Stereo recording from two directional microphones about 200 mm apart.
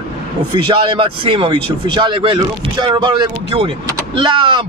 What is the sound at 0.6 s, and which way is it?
Speech, 25° right (ahead or behind).